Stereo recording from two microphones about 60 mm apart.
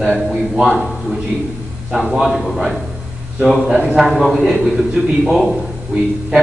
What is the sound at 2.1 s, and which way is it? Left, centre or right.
Speech, centre.